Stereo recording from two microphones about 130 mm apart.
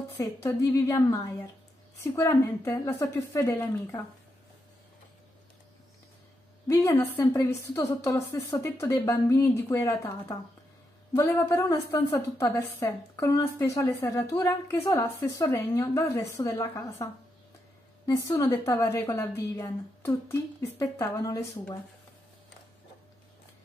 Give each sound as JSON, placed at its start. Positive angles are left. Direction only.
{"t": 0.2, "sound": "speech", "side_deg": 25}
{"t": 6.7, "sound": "speech", "side_deg": 25}
{"t": 18.4, "sound": "speech", "side_deg": 20}